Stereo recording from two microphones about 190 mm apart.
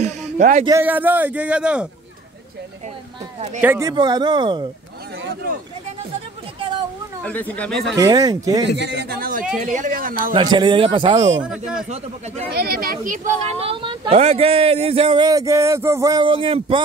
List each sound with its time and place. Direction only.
0.0 s a sound: 35° right (ahead or behind)
0.7 s speech: 10° right (ahead or behind)
3.6 s speech: 10° right (ahead or behind)
3.9 s a man's voice: 25° right (ahead or behind)
7.2 s speech: 10° left (ahead or behind)
8.0 s a man's voice: 20° right (ahead or behind)
8.6 s speech: 65° right (ahead or behind); by 10.3 s 45° right (ahead or behind)
10.3 s a man's voice: 25° right (ahead or behind)
11.4 s speech: 5° right (ahead or behind)
12.4 s speech: 55° right (ahead or behind); by 16.8 s 30° right (ahead or behind)